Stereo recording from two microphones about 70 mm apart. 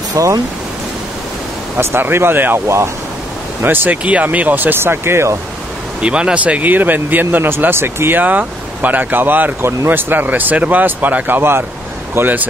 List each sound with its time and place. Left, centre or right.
0.1 s speech: right
1.8 s speech: right
3.6 s speech: right
6.0 s speech: centre